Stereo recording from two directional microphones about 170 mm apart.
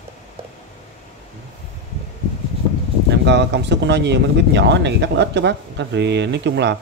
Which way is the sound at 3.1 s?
90° right.